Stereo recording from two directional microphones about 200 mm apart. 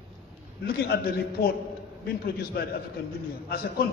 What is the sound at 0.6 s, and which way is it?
A man's voice, 50° left (ahead or behind).